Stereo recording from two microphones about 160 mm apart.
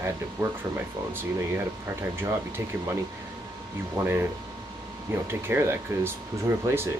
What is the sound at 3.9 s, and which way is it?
Speech, 15° right (ahead or behind).